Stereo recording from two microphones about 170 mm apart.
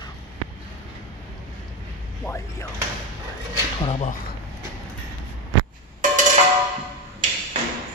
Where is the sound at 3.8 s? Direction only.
35° left (ahead or behind).